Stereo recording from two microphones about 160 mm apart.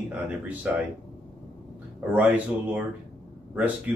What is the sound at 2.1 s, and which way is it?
Speech, 10° right (ahead or behind).